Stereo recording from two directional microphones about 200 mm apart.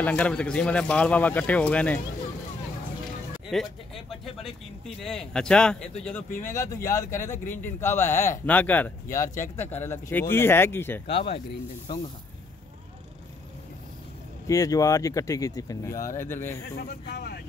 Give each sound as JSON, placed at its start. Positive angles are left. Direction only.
{"t": 0.0, "sound": "speech", "side_deg": 5}
{"t": 3.4, "sound": "speech", "side_deg": 0}
{"t": 6.4, "sound": "speech", "side_deg": 15}
{"t": 14.5, "sound": "speech", "side_deg": 15}
{"t": 16.7, "sound": "speech", "side_deg": 50}